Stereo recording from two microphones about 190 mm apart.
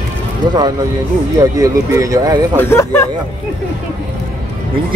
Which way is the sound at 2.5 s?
15° left (ahead or behind).